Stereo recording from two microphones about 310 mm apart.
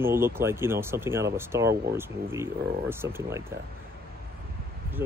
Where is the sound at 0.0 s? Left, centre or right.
Centre.